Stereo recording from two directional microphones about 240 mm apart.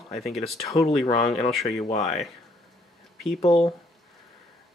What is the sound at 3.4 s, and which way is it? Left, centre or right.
Speech, left.